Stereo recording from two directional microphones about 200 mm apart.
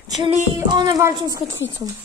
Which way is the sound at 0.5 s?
20° right (ahead or behind).